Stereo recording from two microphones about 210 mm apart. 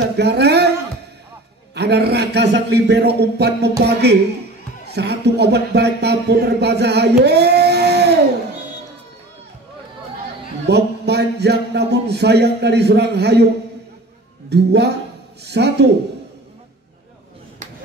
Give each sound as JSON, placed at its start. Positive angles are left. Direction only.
{"t": 0.2, "sound": "speech", "side_deg": -50}
{"t": 1.8, "sound": "speech", "side_deg": -50}
{"t": 10.7, "sound": "speech", "side_deg": -50}
{"t": 14.5, "sound": "speech", "side_deg": -50}